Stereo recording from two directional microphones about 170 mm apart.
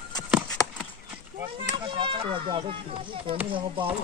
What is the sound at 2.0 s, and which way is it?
Speech, 30° right (ahead or behind).